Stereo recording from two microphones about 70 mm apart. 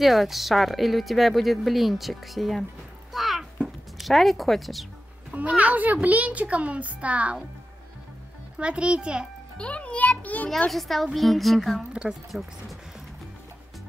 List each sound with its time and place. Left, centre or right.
0.0 s speech: centre
3.1 s a sound: centre
3.6 s speech: centre
5.5 s a child's voice: right
8.5 s a child's voice: centre
9.6 s a child's voice: centre
10.7 s speech: centre
11.9 s a child's voice: centre
12.3 s speech: centre